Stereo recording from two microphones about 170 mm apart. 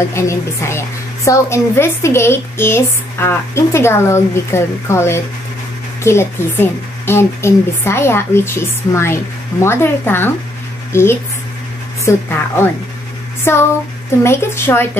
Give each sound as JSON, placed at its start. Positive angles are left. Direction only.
{"t": 0.1, "sound": "a woman's voice", "side_deg": 15}